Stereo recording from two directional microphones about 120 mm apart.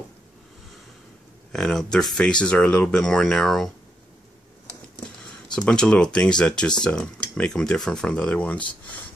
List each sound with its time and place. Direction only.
1.5 s speech: 5° left (ahead or behind)
5.7 s speech: 10° left (ahead or behind)